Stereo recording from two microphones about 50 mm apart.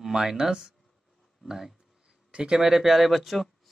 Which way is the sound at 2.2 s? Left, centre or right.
Centre.